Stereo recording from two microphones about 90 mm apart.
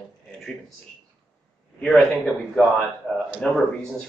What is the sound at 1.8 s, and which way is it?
Speech, 5° left (ahead or behind).